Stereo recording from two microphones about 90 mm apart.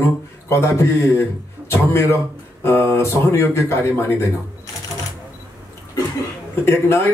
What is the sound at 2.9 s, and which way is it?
Speech, 30° left (ahead or behind).